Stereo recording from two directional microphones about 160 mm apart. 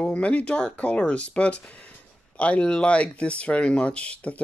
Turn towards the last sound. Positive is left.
turn(degrees=5)  # may be behind; listen again after turning